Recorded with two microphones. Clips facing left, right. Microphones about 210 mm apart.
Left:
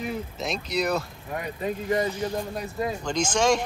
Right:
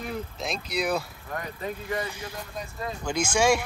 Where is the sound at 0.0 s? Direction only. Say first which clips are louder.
Left 2 dB; centre (ahead or behind).